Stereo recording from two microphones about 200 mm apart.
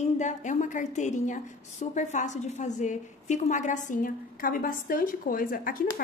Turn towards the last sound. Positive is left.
turn(degrees=45)  # may be behind; listen again after turning